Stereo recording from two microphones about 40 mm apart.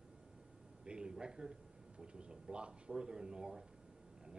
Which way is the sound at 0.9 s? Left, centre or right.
Right.